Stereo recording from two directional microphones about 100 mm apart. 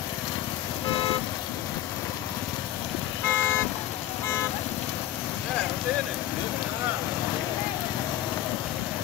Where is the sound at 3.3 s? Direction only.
20° left (ahead or behind).